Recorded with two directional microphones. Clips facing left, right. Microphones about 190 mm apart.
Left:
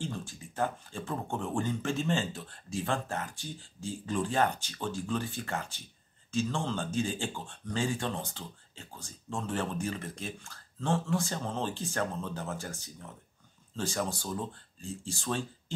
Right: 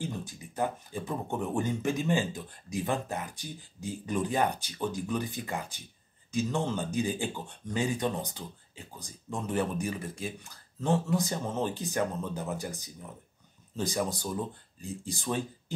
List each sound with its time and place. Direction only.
0.0 s speech: 15° right (ahead or behind)